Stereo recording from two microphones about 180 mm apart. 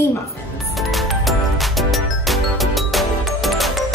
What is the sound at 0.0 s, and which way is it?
Music, 15° left (ahead or behind).